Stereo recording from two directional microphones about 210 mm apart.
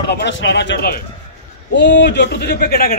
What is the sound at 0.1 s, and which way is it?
A man's voice, 55° left (ahead or behind).